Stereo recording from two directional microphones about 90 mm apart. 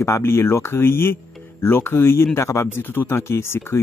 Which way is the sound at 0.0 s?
30° left (ahead or behind).